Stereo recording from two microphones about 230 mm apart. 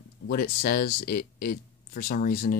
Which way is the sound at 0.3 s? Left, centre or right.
Left.